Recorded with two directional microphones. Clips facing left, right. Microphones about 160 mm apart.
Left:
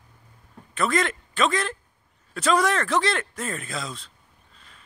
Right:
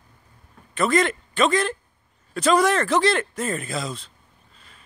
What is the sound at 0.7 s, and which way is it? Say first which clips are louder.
Speech: right 4 dB; centre (ahead or behind).